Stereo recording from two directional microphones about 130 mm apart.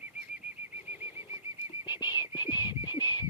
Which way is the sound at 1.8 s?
35° left (ahead or behind).